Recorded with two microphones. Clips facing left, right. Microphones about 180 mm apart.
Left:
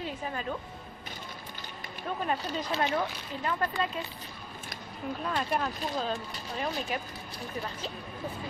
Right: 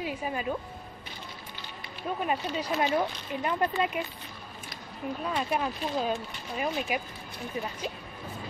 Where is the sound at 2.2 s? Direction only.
10° right (ahead or behind).